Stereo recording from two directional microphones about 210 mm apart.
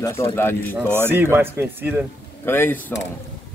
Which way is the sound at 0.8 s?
10° right (ahead or behind).